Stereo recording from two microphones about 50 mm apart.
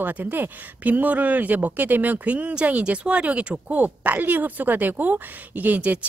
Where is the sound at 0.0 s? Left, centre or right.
Right.